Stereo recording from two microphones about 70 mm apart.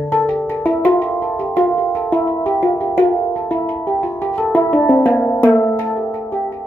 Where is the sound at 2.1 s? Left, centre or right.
Left.